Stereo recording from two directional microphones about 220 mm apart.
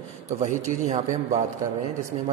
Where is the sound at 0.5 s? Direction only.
35° right (ahead or behind).